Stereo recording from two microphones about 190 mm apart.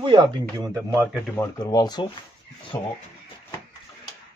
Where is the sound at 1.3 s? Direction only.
15° left (ahead or behind).